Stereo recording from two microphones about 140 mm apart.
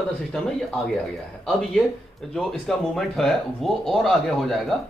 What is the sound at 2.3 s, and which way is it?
Speech, centre (ahead or behind).